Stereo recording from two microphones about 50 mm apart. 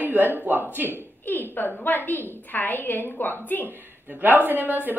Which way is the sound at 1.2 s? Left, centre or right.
Left.